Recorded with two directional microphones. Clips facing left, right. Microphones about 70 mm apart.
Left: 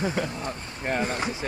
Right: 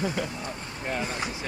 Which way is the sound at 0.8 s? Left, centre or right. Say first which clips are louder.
Left 4 dB; left.